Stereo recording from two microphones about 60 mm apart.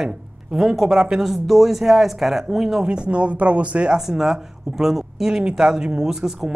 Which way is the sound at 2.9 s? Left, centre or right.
Centre.